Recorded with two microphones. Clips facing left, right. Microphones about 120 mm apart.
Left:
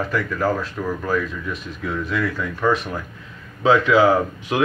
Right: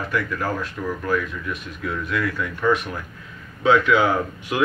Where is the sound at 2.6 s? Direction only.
30° left (ahead or behind).